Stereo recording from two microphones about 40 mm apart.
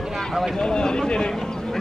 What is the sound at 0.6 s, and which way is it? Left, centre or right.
Speech, left.